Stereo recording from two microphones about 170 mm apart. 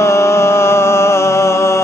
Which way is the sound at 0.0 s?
15° left (ahead or behind).